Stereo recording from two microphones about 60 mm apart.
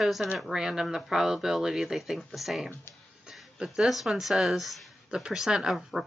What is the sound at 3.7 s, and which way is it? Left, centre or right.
Speech, centre.